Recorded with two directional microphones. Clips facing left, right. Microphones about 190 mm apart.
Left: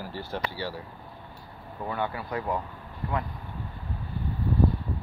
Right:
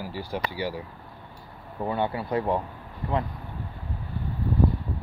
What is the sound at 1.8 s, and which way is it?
Speech, 25° right (ahead or behind).